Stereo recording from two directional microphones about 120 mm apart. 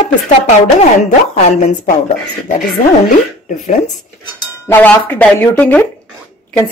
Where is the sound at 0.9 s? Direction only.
90° left.